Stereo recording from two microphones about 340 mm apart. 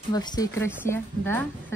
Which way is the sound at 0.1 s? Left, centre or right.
Centre.